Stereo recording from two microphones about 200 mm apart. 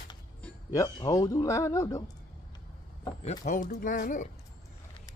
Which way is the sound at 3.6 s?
45° left (ahead or behind).